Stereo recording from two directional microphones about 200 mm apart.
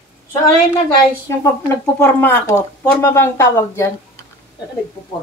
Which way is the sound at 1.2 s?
10° left (ahead or behind).